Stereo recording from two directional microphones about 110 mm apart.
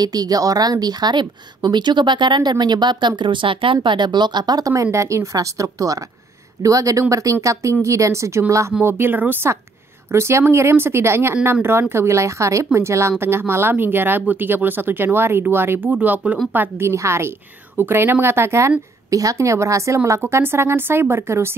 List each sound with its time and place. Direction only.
0.0 s speech: 35° right (ahead or behind)